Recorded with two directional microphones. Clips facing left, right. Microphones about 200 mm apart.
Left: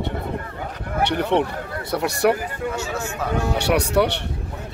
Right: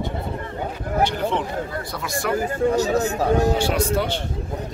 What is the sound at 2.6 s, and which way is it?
Speech, 35° right (ahead or behind).